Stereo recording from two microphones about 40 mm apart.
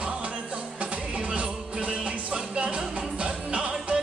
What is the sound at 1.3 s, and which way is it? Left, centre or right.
Music, right.